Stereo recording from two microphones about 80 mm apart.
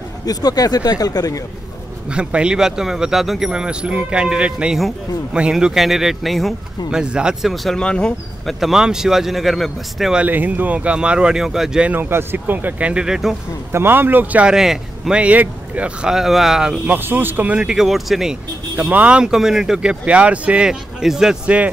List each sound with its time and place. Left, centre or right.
0.2 s speech: left
2.0 s speech: centre
7.5 s speech: centre
8.5 s speech: centre
10.1 s speech: centre
11.9 s speech: right; by 13.4 s centre
13.7 s speech: right
14.5 s speech: centre
16.9 s speech: right
17.6 s speech: centre
18.8 s speech: centre